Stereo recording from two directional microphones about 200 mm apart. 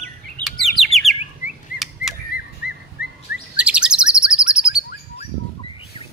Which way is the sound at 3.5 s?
5° right (ahead or behind).